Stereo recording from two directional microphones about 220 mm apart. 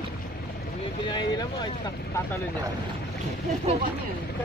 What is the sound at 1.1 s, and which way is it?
Vehicle, 20° left (ahead or behind).